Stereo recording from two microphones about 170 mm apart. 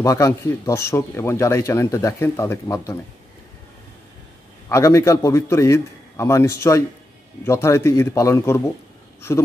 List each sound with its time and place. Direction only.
0.0 s speech: 20° left (ahead or behind)
4.6 s speech: 15° left (ahead or behind)